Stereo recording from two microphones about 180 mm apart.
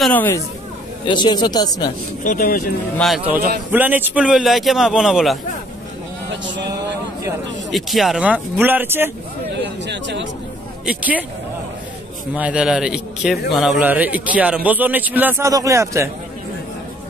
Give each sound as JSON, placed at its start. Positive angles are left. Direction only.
{"t": 0.0, "sound": "speech", "side_deg": 10}
{"t": 1.0, "sound": "speech", "side_deg": 25}
{"t": 2.2, "sound": "speech", "side_deg": 55}
{"t": 3.3, "sound": "a man's voice", "side_deg": -10}
{"t": 7.7, "sound": "a man's voice", "side_deg": 0}
{"t": 9.6, "sound": "speech", "side_deg": -75}
{"t": 10.9, "sound": "a man's voice", "side_deg": -10}
{"t": 12.4, "sound": "a man's voice", "side_deg": -5}